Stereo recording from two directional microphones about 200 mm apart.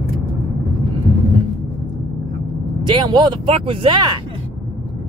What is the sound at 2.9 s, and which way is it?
Speech, 20° right (ahead or behind).